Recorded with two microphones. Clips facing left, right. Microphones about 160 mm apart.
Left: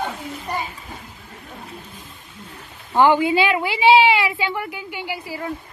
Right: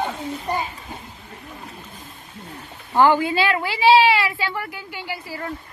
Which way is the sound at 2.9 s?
15° left (ahead or behind).